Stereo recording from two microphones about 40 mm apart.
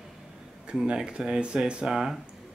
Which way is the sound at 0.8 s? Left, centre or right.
Right.